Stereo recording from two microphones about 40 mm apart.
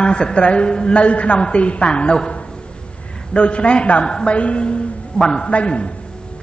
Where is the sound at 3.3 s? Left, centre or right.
Left.